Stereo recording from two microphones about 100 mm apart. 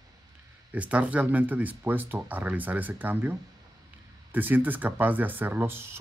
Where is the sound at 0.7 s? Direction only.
15° right (ahead or behind).